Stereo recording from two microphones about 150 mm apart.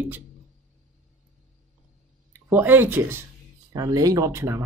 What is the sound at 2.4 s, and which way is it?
Speech, 15° right (ahead or behind).